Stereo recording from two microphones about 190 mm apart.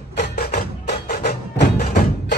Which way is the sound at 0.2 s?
55° left (ahead or behind).